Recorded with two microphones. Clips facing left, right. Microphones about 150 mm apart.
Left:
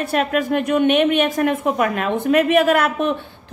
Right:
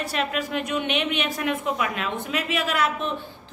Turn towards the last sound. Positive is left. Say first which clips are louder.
# left 9 dB
turn(degrees=55)  # may be behind; listen again after turning